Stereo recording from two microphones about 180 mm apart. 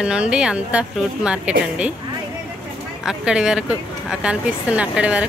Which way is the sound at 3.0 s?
5° right (ahead or behind).